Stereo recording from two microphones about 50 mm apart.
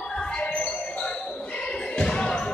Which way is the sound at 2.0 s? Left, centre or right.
Centre.